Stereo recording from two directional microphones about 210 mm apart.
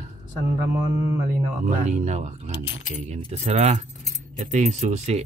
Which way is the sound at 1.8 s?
30° right (ahead or behind).